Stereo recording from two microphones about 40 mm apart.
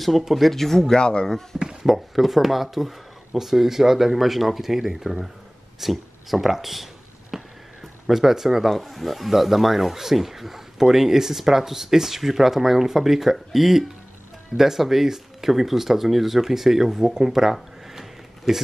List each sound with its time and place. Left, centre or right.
0.0 s speech: centre; by 1.3 s left
1.6 s a sound: centre
1.9 s speech: centre